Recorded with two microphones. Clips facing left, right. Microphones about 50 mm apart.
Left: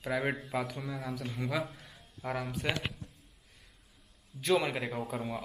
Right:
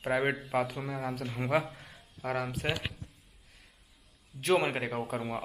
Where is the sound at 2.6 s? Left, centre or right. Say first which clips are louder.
Left 1 dB; right.